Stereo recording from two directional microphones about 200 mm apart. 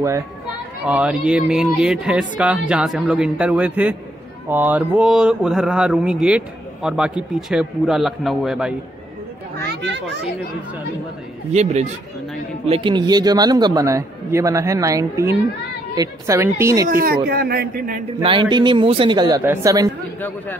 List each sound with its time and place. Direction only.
0.8 s speech: 5° right (ahead or behind)
11.5 s a man's voice: 35° right (ahead or behind); by 16.9 s 15° right (ahead or behind)
16.9 s speech: 50° right (ahead or behind)
18.2 s a man's voice: 25° right (ahead or behind)
20.2 s speech: 10° left (ahead or behind)